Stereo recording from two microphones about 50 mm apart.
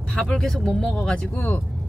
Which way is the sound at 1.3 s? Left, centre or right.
Left.